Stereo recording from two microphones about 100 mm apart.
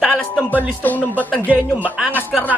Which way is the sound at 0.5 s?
15° left (ahead or behind).